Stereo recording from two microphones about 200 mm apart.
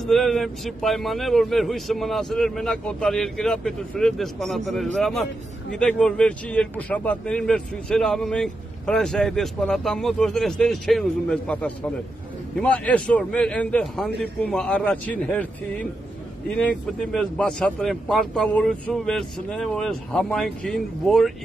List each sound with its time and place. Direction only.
0.0 s a man's voice: centre (ahead or behind)